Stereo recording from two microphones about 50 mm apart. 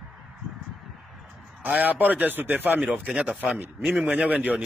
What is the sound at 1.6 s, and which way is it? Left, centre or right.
A man's voice, right.